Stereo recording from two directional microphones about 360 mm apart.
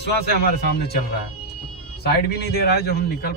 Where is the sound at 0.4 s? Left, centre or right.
Left.